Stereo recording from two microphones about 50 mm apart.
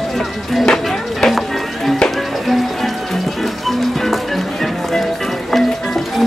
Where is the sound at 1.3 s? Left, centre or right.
Centre.